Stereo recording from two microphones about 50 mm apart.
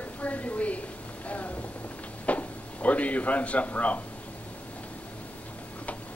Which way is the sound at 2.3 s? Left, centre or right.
Left.